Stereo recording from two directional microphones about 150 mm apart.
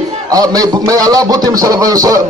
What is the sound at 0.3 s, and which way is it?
A man's voice, 25° right (ahead or behind).